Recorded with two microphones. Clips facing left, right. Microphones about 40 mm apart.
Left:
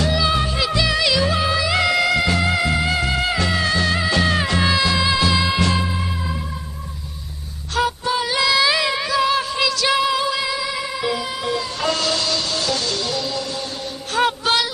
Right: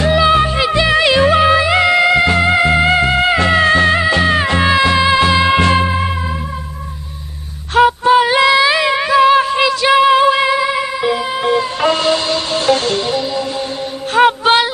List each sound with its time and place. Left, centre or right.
0.0 s music: right
7.7 s female singing: right
11.4 s music: right